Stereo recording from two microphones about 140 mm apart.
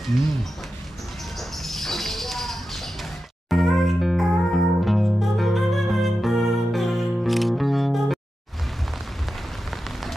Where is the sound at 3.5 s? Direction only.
Centre (ahead or behind).